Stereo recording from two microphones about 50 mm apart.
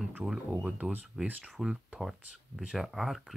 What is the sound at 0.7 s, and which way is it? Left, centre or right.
Speech, right.